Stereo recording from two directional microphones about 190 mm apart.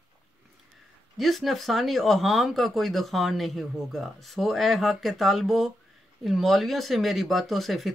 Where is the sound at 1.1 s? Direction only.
Centre (ahead or behind).